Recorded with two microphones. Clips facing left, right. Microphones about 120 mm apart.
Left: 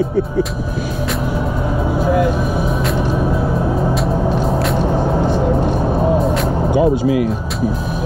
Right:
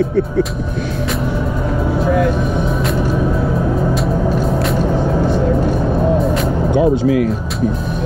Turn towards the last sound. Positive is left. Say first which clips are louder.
# right 1 dB
turn(degrees=5)  # may be behind; listen again after turning